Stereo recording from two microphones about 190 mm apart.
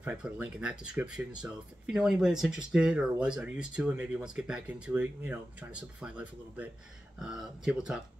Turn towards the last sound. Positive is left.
turn(degrees=-5)  # may be behind; listen again after turning